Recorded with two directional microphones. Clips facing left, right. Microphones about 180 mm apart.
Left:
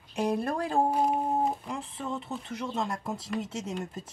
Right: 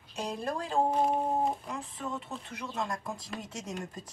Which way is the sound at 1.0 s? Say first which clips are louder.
Left 1 dB; centre (ahead or behind).